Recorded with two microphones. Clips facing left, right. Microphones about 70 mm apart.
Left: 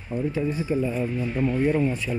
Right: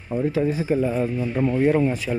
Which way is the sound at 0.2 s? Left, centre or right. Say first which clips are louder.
Right 4 dB; right.